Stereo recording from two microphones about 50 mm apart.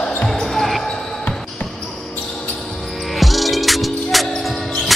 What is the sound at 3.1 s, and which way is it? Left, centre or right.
Music, centre.